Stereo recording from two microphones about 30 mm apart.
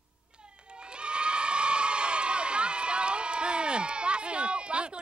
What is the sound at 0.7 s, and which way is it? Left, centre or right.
Crowd, right.